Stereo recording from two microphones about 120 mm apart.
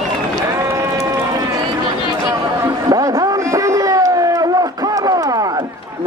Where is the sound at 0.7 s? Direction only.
25° right (ahead or behind).